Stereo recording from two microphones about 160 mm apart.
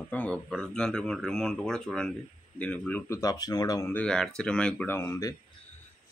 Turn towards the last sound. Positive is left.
turn(degrees=20)  # may be behind; listen again after turning